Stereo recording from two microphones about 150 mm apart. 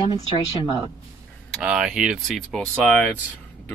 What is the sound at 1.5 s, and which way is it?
Speech, 5° right (ahead or behind).